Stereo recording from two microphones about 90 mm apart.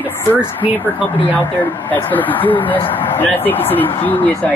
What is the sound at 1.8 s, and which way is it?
Speech, 20° left (ahead or behind).